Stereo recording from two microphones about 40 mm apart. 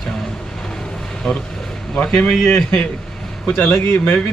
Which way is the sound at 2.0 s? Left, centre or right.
Left.